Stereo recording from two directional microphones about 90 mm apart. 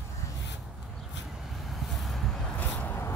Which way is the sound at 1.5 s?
Centre (ahead or behind).